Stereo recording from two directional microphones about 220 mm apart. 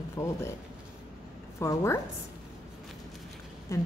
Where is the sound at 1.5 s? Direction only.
10° left (ahead or behind).